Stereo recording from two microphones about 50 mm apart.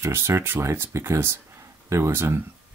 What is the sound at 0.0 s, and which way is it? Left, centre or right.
Speech, right.